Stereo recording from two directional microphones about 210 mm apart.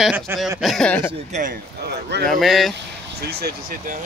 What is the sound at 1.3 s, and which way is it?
Speech, 40° right (ahead or behind).